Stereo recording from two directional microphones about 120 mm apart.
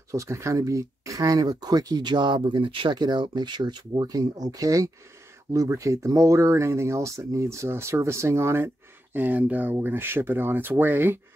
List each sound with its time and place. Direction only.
0.1 s speech: 25° right (ahead or behind)